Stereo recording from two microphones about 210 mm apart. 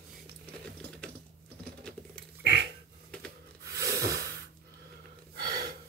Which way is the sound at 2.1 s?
50° right (ahead or behind).